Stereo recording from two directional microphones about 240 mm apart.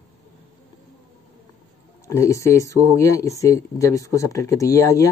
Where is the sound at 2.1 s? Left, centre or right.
Centre.